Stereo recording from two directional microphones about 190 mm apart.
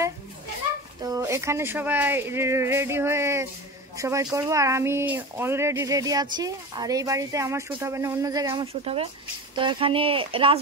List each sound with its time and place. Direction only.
1.0 s speech: 15° right (ahead or behind)
8.8 s speech: 30° right (ahead or behind)